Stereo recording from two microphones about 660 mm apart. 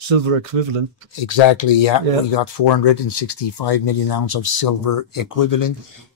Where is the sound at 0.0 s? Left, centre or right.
Right.